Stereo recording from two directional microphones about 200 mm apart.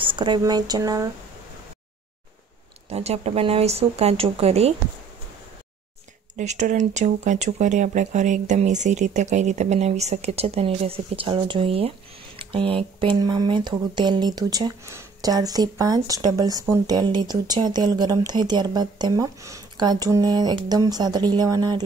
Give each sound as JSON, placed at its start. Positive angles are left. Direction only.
{"t": 0.0, "sound": "speech", "side_deg": -25}
{"t": 2.9, "sound": "speech", "side_deg": -30}
{"t": 6.3, "sound": "speech", "side_deg": -35}